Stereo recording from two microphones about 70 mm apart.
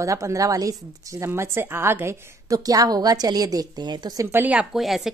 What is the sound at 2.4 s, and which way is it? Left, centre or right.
A woman's voice, right.